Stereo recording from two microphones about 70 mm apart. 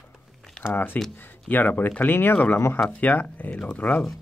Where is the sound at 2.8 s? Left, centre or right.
Left.